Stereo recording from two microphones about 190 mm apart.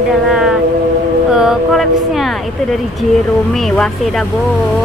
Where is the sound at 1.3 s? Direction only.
5° right (ahead or behind).